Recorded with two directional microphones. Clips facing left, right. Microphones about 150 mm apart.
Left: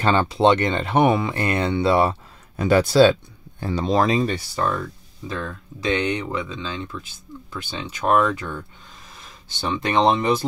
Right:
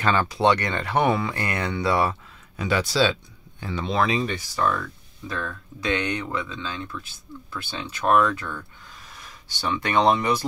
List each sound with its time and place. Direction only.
0.0 s speech: 30° left (ahead or behind)
2.5 s speech: 45° left (ahead or behind)
5.3 s speech: 20° left (ahead or behind)
9.6 s speech: 20° left (ahead or behind)